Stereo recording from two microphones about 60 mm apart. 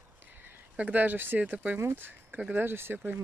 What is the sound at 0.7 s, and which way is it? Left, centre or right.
Speech, right.